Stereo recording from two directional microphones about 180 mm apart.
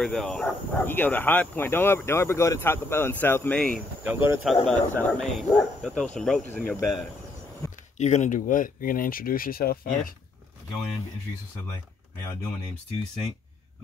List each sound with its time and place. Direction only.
0.0 s speech: 5° left (ahead or behind)
4.0 s speech: 10° right (ahead or behind)
4.6 s speech: centre (ahead or behind)
7.6 s a sound: 15° left (ahead or behind)
8.0 s speech: 40° left (ahead or behind); by 10.1 s 55° left (ahead or behind)